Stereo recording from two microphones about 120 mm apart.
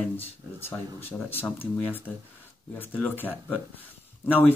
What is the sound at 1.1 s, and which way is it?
Speech, 15° left (ahead or behind).